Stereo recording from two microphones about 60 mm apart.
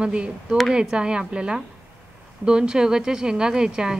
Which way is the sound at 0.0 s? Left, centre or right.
Centre.